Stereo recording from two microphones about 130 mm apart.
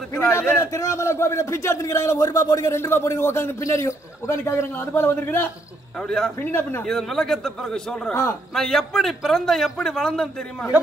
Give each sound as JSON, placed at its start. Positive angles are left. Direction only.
{"t": 0.3, "sound": "a man's voice", "side_deg": 20}
{"t": 5.9, "sound": "a man's voice", "side_deg": 5}
{"t": 6.9, "sound": "a man's voice", "side_deg": 5}
{"t": 8.1, "sound": "a man's voice", "side_deg": 20}
{"t": 8.5, "sound": "a man's voice", "side_deg": 0}